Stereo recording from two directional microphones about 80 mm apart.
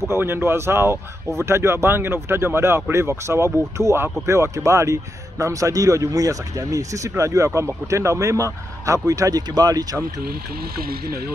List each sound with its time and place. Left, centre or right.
0.1 s speech: right